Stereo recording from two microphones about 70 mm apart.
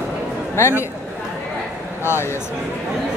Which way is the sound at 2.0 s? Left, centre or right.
Left.